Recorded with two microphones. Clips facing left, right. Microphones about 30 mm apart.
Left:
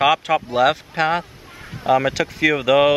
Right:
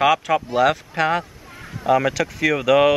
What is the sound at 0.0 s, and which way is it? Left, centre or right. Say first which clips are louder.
Speech: left 1 dB; centre.